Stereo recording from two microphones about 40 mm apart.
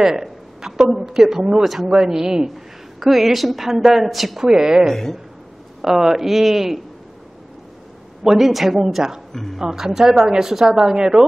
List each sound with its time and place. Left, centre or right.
0.1 s a woman's voice: centre
4.5 s speech: centre
8.2 s a woman's voice: centre
9.3 s speech: centre
9.6 s speech: centre